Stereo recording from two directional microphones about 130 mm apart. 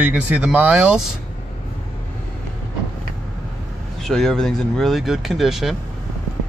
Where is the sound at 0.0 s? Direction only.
10° right (ahead or behind).